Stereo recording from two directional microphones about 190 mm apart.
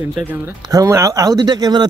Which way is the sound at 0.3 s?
15° right (ahead or behind).